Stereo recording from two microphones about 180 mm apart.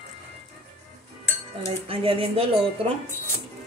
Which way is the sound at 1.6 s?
30° right (ahead or behind).